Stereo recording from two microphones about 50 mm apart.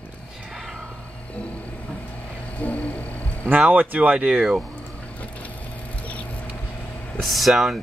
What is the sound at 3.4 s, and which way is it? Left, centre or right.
Speech, right.